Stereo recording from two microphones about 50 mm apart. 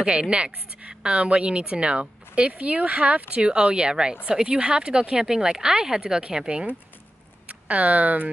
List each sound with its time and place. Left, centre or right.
0.0 s a woman's voice: centre
7.4 s speech: right